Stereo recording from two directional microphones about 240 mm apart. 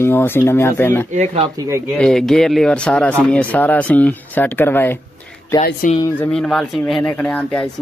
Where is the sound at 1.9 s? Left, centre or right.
Centre.